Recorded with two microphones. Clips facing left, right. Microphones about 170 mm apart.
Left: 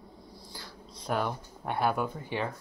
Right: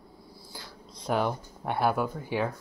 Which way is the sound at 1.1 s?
10° right (ahead or behind).